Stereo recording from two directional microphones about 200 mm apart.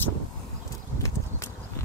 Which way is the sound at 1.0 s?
15° left (ahead or behind).